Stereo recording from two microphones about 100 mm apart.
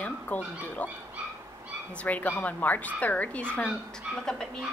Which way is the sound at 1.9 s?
15° left (ahead or behind).